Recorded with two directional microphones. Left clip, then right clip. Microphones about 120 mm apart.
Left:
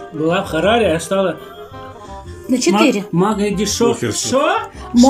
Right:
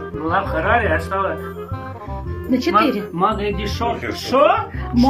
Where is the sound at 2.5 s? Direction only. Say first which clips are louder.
Left 2 dB; 15° left (ahead or behind).